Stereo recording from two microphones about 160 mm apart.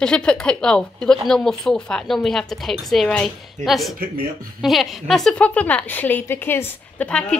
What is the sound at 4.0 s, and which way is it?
Speech, 65° right (ahead or behind).